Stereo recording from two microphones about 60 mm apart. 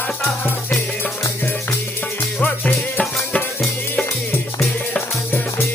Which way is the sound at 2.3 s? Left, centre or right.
Left.